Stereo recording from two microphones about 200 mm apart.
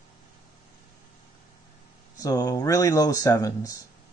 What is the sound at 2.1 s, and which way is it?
Speech, 20° left (ahead or behind).